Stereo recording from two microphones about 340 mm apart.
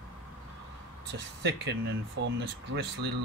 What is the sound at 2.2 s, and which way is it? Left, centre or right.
Speech, right.